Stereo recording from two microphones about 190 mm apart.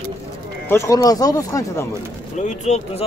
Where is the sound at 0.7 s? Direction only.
15° left (ahead or behind).